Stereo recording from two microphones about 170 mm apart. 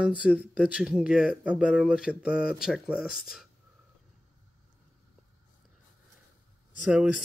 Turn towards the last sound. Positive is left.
turn(degrees=-5)  # may be behind; listen again after turning